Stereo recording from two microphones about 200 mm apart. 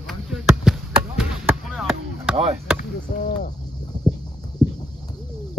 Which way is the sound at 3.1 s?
40° left (ahead or behind).